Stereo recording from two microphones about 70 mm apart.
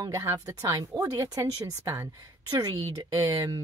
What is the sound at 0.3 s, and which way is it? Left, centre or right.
Speech, right.